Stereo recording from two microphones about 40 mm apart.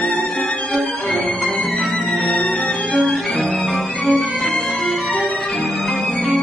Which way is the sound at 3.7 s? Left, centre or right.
Centre.